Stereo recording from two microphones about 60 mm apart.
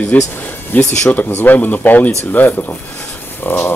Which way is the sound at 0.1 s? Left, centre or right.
Left.